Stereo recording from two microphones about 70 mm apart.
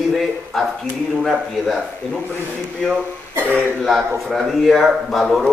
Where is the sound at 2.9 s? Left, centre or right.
Right.